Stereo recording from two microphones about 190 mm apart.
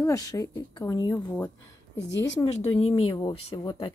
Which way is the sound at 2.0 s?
70° left (ahead or behind).